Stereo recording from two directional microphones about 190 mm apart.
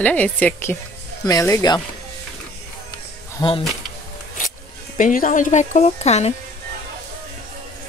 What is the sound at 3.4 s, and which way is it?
Speech, 20° left (ahead or behind).